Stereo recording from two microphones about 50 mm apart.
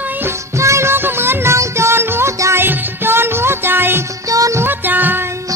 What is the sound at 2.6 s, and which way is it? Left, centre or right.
Music, right.